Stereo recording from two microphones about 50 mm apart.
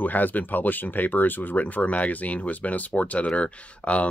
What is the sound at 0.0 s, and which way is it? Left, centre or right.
Speech, left.